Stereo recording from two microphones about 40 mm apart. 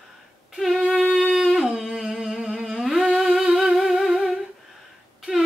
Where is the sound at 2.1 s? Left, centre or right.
Centre.